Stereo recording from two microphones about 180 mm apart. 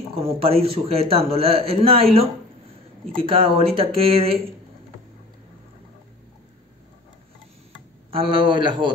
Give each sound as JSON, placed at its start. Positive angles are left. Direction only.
{"t": 0.2, "sound": "a man's voice", "side_deg": -30}
{"t": 3.2, "sound": "a man's voice", "side_deg": -30}
{"t": 8.1, "sound": "a man's voice", "side_deg": -30}